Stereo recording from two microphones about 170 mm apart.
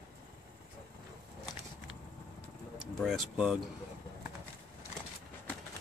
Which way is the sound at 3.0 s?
5° right (ahead or behind).